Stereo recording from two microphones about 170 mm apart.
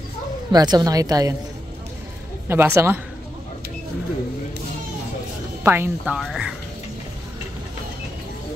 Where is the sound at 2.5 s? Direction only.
15° right (ahead or behind).